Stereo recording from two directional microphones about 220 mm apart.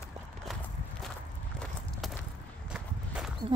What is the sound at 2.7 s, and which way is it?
Walk, 5° right (ahead or behind).